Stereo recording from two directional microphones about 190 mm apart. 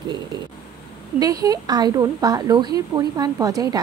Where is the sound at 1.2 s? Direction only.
20° right (ahead or behind).